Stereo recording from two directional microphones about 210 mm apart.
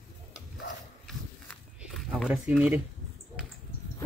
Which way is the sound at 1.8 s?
Centre (ahead or behind).